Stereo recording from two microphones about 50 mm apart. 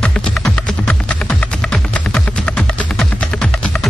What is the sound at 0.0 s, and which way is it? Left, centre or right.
Music, left.